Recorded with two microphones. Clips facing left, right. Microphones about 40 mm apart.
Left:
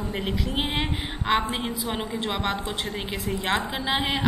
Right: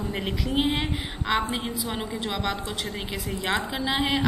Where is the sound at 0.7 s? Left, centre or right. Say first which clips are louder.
Right 1 dB; left.